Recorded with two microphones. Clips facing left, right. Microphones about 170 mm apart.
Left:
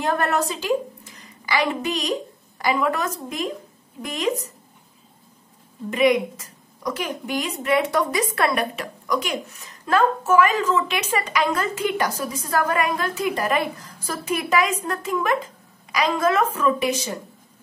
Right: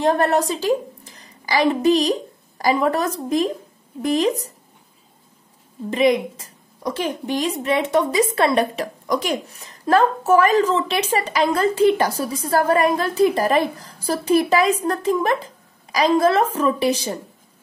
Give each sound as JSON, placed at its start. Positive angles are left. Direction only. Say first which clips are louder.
{"t": 0.0, "sound": "a woman's voice", "louder": "right 5 dB", "side_deg": -30}
{"t": 5.9, "sound": "a woman's voice", "louder": "right 1 dB", "side_deg": -30}